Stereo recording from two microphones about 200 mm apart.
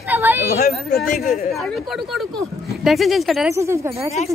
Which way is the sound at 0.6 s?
50° left (ahead or behind).